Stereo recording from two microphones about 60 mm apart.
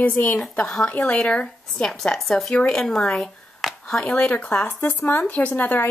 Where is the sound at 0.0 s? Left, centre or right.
Left.